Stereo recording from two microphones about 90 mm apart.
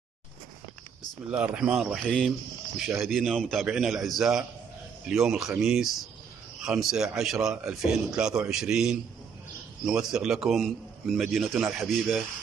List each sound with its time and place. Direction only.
1.3 s a man's voice: 10° right (ahead or behind)